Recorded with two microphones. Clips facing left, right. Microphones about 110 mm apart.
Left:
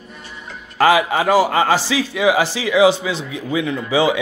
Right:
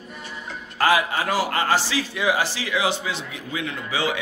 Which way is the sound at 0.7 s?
90° left.